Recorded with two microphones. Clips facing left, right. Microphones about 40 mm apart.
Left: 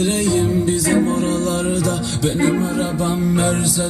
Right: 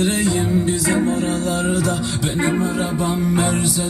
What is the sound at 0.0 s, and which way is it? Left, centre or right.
Music, centre.